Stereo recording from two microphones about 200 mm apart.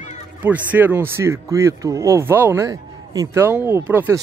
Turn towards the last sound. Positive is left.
turn(degrees=-10)  # may be behind; listen again after turning